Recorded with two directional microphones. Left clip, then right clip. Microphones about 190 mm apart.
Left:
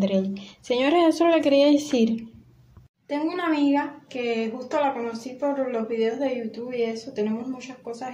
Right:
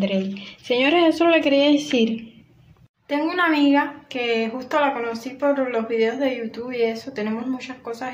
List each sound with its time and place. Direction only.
0.0 s a woman's voice: 5° left (ahead or behind)